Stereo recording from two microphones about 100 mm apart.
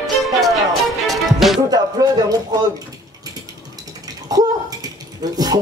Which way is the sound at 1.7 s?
40° right (ahead or behind).